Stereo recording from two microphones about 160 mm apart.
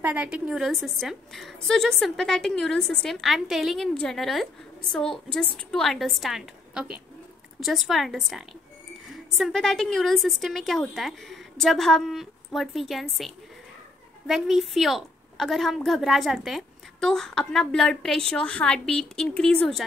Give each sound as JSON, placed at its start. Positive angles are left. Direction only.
{"t": 0.0, "sound": "a woman's voice", "side_deg": -10}